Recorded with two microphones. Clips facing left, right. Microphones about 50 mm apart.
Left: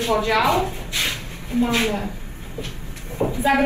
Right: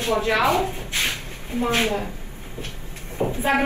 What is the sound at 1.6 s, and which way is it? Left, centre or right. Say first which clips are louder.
Speech: right 1 dB; right.